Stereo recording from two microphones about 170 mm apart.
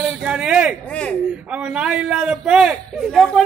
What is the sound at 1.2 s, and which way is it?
A man's voice, 5° right (ahead or behind).